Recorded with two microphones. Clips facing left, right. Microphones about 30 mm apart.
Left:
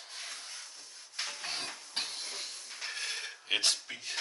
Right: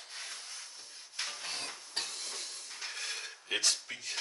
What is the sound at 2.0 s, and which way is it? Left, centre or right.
Hiss, left.